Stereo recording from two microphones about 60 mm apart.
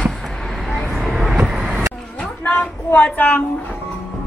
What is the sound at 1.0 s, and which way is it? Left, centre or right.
Vehicle, centre.